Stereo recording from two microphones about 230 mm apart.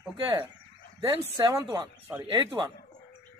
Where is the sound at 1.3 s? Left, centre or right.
Centre.